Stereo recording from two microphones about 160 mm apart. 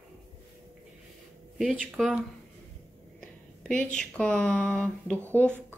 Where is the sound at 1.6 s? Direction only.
5° right (ahead or behind).